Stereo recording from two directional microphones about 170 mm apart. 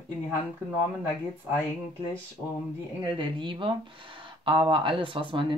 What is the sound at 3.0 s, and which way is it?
Speech, 30° right (ahead or behind).